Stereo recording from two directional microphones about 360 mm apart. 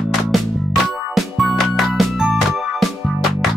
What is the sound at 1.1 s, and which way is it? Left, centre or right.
Music, centre.